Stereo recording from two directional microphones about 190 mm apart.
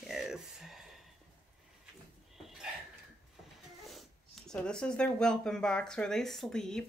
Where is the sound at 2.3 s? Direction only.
Centre (ahead or behind).